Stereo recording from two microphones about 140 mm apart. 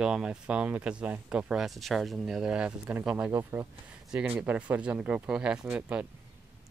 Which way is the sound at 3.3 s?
20° right (ahead or behind).